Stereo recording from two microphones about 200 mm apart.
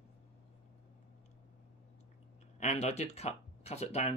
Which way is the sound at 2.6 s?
35° left (ahead or behind).